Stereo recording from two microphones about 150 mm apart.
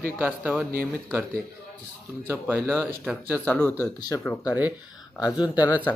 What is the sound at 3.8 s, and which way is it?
Speech, 25° left (ahead or behind).